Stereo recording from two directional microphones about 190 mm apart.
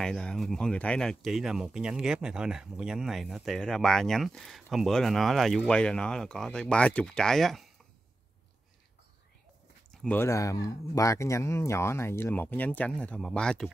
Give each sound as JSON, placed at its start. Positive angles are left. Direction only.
{"t": 0.0, "sound": "speech", "side_deg": 5}
{"t": 9.8, "sound": "speech", "side_deg": 10}